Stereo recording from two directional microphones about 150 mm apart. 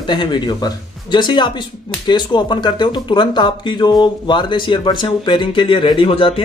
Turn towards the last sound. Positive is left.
turn(degrees=35)  # may be behind; listen again after turning